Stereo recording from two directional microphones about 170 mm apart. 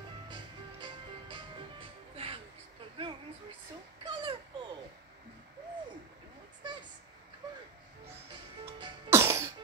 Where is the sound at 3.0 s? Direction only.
30° right (ahead or behind).